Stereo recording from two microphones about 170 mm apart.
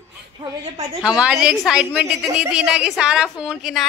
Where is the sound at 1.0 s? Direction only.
5° right (ahead or behind).